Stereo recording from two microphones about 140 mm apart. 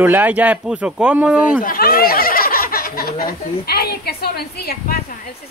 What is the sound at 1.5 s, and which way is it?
Speech, 85° left.